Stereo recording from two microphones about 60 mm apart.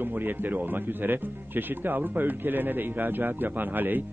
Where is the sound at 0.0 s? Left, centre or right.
Right.